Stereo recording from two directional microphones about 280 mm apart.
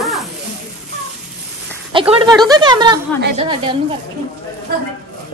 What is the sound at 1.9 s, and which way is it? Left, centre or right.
Speech, centre.